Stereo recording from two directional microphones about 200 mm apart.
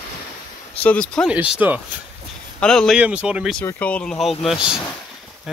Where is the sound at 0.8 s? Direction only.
5° left (ahead or behind).